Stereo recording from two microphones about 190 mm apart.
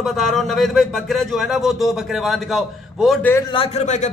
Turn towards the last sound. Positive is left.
turn(degrees=35)  # may be behind; listen again after turning